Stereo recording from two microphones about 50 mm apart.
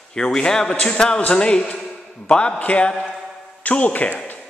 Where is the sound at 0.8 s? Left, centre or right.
Centre; by 4.2 s left.